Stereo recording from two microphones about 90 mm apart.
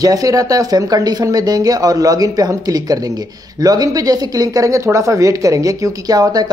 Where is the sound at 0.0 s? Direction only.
40° right (ahead or behind).